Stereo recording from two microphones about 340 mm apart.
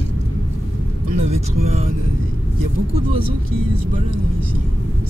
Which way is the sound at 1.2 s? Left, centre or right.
Centre.